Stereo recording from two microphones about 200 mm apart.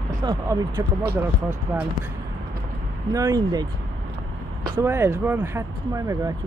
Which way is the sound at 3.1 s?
20° right (ahead or behind).